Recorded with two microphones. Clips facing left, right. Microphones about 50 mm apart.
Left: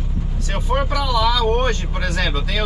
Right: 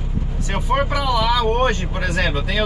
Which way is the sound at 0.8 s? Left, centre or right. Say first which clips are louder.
Left 1 dB; centre.